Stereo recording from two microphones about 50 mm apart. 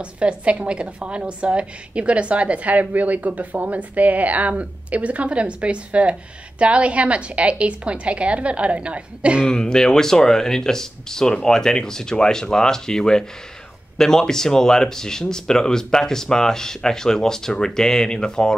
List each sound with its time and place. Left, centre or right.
0.0 s a woman's voice: right
9.5 s speech: centre